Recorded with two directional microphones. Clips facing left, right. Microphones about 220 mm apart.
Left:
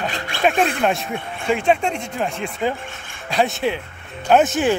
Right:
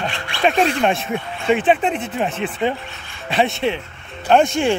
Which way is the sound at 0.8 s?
Centre (ahead or behind).